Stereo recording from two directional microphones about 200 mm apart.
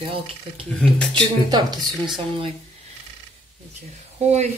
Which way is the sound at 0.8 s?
5° left (ahead or behind).